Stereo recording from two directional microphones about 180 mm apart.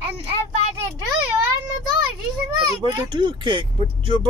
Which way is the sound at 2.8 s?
25° right (ahead or behind).